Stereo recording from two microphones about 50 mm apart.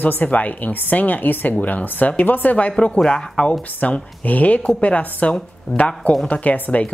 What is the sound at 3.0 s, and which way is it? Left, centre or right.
Speech, centre.